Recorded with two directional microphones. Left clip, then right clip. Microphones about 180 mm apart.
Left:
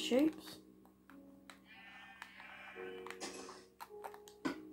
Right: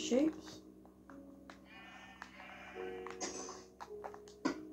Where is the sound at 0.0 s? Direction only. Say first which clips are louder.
Even; 20° left (ahead or behind).